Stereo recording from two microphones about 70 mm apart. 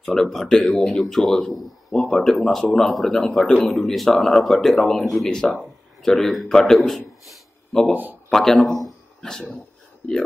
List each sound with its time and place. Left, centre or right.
0.0 s a man's voice: centre